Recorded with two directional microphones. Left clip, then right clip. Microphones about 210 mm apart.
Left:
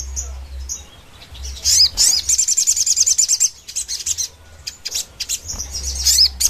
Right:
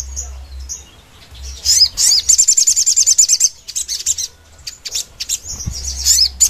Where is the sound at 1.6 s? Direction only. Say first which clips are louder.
Right 2 dB; 20° left (ahead or behind).